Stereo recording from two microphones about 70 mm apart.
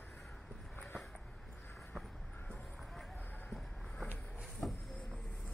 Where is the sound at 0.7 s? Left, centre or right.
Left.